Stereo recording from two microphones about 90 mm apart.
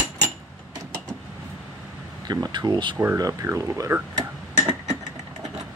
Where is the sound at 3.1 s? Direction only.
35° right (ahead or behind).